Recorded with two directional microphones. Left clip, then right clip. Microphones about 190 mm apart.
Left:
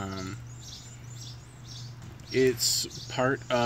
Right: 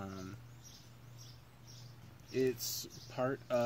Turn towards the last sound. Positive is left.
turn(degrees=-40)  # may be behind; listen again after turning